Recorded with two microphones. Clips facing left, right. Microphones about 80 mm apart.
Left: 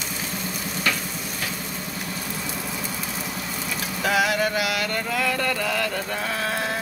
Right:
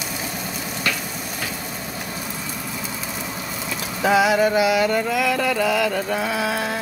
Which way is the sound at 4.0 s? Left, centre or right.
Centre.